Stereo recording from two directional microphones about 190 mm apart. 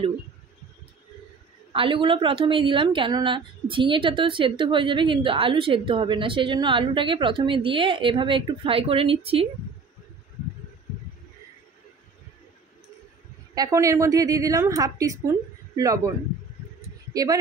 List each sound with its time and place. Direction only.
1.7 s a woman's voice: 25° right (ahead or behind)
13.6 s a woman's voice: 15° right (ahead or behind)
17.1 s speech: 20° right (ahead or behind)